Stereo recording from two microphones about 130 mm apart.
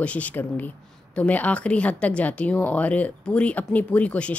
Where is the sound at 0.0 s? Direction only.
10° left (ahead or behind).